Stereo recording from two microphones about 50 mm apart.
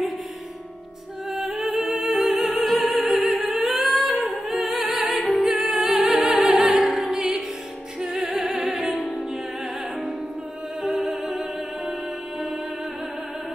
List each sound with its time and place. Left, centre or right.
1.9 s music: centre
3.0 s opera: centre
3.3 s music: centre
10.8 s music: centre